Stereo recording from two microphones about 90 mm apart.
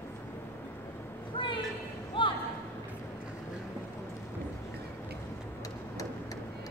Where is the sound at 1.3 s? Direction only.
65° left (ahead or behind).